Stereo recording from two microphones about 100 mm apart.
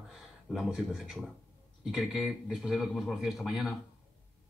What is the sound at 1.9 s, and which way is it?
Speech, centre (ahead or behind).